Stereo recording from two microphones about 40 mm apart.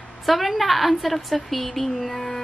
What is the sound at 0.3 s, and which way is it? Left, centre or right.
A woman's voice, centre.